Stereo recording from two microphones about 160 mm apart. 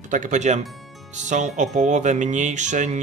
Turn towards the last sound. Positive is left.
turn(degrees=-50)  # may be behind; listen again after turning